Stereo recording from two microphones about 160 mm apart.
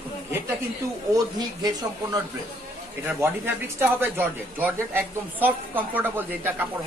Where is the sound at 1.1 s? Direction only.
25° right (ahead or behind).